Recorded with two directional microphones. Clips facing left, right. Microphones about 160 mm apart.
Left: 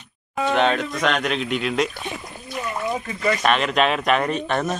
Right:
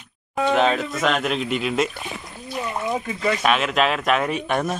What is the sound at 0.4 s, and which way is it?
Speech, centre (ahead or behind).